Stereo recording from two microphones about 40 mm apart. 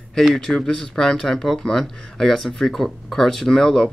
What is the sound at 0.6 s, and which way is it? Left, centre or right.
Speech, centre.